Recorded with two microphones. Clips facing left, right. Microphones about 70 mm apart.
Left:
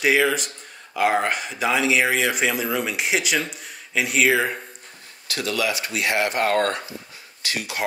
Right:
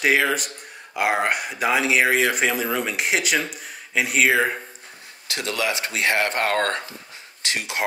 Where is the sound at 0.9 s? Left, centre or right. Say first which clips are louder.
Left 1 dB; centre.